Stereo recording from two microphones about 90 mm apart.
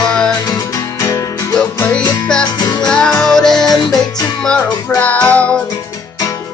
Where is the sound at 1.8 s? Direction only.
20° left (ahead or behind).